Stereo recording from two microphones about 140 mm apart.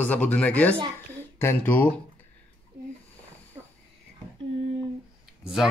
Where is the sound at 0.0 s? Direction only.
10° left (ahead or behind).